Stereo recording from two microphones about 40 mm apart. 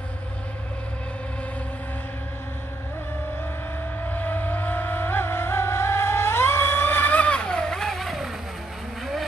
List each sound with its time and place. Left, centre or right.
4.1 s music: left
7.1 s vehicle: left
7.3 s vehicle: left; by 8.3 s centre